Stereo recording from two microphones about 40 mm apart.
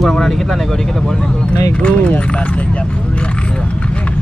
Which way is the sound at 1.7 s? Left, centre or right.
Left.